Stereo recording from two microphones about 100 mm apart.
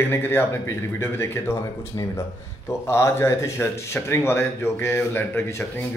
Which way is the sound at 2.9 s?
25° left (ahead or behind).